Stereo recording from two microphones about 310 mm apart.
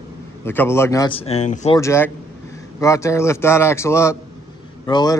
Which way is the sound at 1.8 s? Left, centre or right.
Centre.